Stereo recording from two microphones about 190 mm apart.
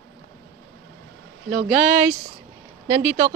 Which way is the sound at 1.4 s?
10° right (ahead or behind).